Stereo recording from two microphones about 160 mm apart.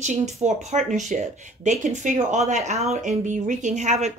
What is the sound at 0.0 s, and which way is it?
A woman's voice, 45° right (ahead or behind).